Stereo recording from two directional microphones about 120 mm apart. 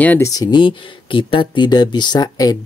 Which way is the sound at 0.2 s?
30° left (ahead or behind).